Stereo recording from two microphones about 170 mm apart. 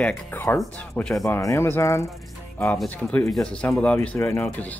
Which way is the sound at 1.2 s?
20° left (ahead or behind).